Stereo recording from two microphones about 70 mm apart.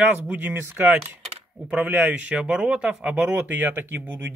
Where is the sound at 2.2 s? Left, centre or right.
Centre.